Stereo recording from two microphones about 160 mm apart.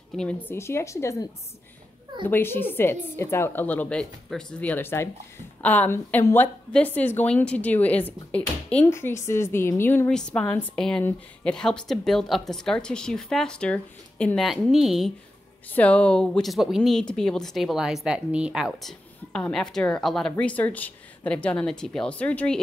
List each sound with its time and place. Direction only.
0.1 s a woman's voice: 5° left (ahead or behind)